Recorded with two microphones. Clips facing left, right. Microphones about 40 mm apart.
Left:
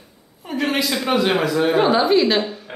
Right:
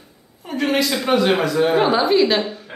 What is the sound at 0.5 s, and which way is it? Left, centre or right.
Speech, centre.